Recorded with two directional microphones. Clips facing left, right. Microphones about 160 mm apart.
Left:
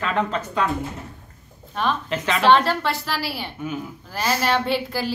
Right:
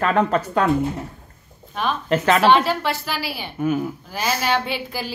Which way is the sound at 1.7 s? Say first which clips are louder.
Even; 5° right (ahead or behind).